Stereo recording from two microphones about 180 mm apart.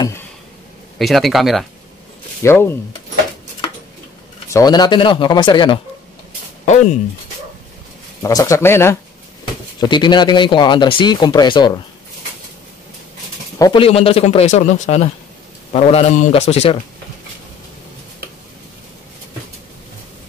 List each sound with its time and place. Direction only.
0.9 s a man's voice: centre (ahead or behind)
2.4 s a man's voice: 15° left (ahead or behind)
4.5 s speech: 20° left (ahead or behind)
8.2 s a man's voice: 20° left (ahead or behind)
9.8 s speech: 25° left (ahead or behind)
13.6 s speech: 20° left (ahead or behind)
13.8 s speech: 30° left (ahead or behind)